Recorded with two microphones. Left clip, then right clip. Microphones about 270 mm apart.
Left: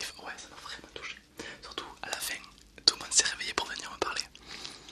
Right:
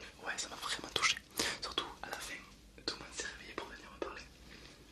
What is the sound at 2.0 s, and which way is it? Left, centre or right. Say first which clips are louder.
Whispering: left 7 dB; centre.